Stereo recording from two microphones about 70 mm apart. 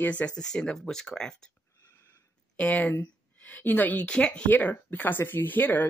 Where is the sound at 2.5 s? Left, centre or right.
Centre.